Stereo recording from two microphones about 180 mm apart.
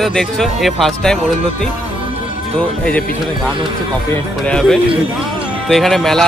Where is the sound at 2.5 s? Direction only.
5° left (ahead or behind).